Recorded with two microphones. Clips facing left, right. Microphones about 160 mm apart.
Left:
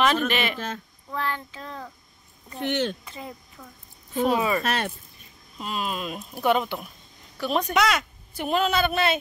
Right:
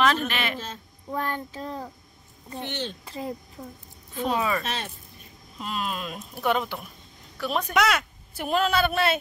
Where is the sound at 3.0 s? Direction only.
30° right (ahead or behind).